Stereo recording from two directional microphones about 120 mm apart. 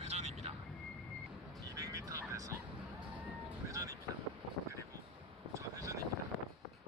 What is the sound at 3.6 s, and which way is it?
Vehicle, 25° right (ahead or behind).